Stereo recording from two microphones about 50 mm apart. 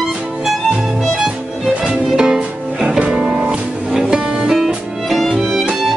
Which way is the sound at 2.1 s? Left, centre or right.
Centre.